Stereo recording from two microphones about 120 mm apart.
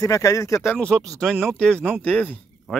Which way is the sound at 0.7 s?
5° left (ahead or behind).